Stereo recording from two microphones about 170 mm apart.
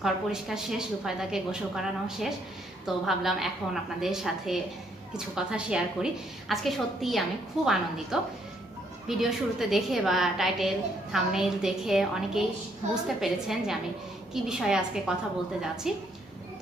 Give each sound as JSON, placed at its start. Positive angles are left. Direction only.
{"t": 0.0, "sound": "a woman's voice", "side_deg": 0}